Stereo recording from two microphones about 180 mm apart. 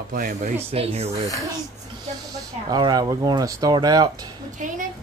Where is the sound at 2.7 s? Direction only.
20° right (ahead or behind).